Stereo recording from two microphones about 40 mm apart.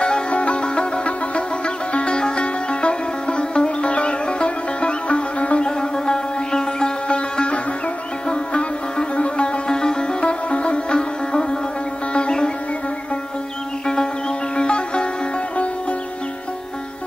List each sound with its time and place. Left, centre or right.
0.0 s music: left
5.8 s sitar: centre
9.7 s sitar: centre
10.2 s sitar: left
12.1 s music: left
14.6 s music: left